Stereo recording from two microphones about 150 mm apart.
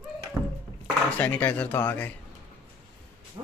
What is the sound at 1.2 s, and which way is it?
Speech, 10° left (ahead or behind).